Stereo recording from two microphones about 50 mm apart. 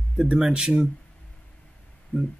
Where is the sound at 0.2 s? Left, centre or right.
Centre.